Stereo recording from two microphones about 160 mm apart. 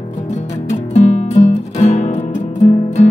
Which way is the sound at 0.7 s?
45° left (ahead or behind).